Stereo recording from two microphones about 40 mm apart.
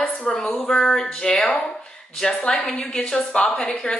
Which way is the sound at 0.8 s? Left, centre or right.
Centre.